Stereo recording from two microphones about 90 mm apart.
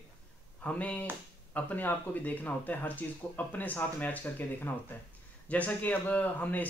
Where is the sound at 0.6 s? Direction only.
15° left (ahead or behind).